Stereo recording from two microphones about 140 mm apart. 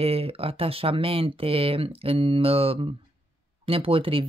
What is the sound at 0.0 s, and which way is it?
Speech, 45° right (ahead or behind).